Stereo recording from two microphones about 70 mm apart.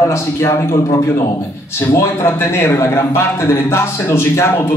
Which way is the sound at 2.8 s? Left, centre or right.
Left.